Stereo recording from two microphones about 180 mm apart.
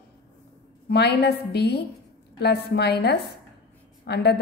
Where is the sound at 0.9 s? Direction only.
65° left (ahead or behind).